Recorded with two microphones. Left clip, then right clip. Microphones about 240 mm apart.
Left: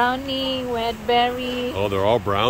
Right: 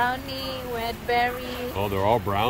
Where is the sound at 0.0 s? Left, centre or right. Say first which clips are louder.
Left 5 dB; left.